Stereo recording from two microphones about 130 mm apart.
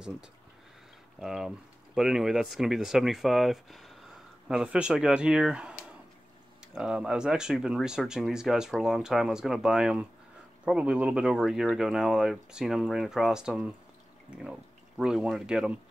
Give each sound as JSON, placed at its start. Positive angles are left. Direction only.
{"t": 1.2, "sound": "speech", "side_deg": -5}